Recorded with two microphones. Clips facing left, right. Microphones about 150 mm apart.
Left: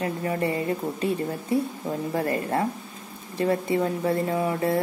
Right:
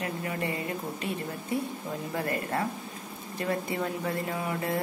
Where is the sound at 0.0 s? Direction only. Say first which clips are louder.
Left 6 dB; 35° left (ahead or behind).